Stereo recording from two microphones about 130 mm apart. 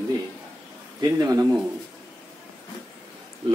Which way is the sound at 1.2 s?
25° right (ahead or behind).